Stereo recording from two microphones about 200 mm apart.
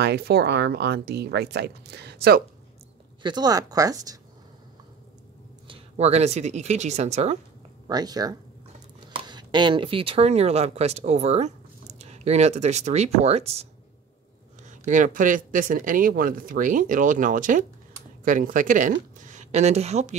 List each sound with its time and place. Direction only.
0.0 s speech: 55° right (ahead or behind)
3.2 s speech: 20° right (ahead or behind)
5.7 s speech: 30° right (ahead or behind)
7.9 s speech: 20° right (ahead or behind)